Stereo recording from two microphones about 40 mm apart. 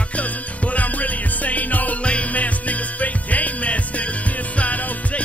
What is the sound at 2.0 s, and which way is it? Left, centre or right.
Music, left.